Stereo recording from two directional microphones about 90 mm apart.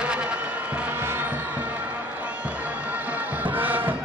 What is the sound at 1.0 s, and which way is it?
Music, 25° right (ahead or behind).